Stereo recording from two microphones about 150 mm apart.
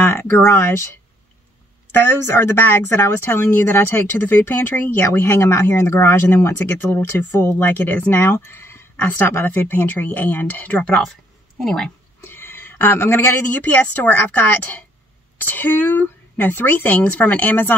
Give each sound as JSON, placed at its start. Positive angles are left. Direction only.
{"t": 0.0, "sound": "speech", "side_deg": 15}
{"t": 2.0, "sound": "speech", "side_deg": 15}
{"t": 12.3, "sound": "speech", "side_deg": 15}
{"t": 15.4, "sound": "speech", "side_deg": 10}